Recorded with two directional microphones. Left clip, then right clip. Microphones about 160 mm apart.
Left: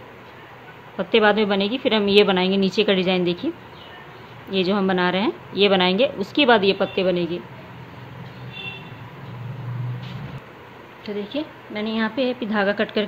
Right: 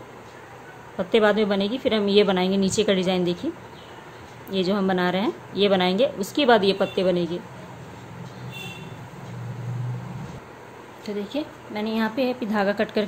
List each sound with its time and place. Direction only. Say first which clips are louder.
0.9 s a woman's voice: left 2 dB; 10° left (ahead or behind)
11.1 s a woman's voice: left 1 dB; centre (ahead or behind)